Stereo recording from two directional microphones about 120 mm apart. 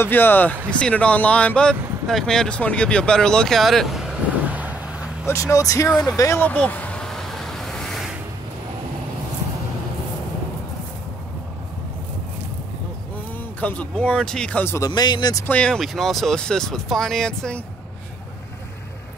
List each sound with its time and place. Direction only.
0.0 s speech: 15° left (ahead or behind); by 5.1 s 10° right (ahead or behind)
5.2 s speech: 25° left (ahead or behind)
6.4 s a sound: 10° left (ahead or behind)
13.6 s speech: 10° left (ahead or behind)
14.6 s speech: 20° left (ahead or behind)
14.9 s speech: 40° left (ahead or behind)
15.4 s speech: 10° left (ahead or behind)